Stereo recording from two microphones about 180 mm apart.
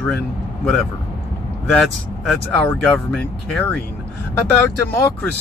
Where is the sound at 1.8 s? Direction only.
10° left (ahead or behind).